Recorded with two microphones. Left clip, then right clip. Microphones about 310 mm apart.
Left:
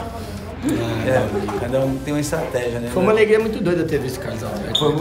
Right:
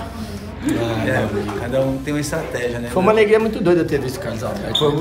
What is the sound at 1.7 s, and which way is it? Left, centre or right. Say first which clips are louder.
Speech: right 2 dB; centre.